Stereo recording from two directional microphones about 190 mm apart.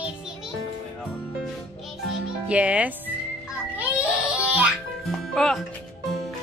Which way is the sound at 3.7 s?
5° right (ahead or behind).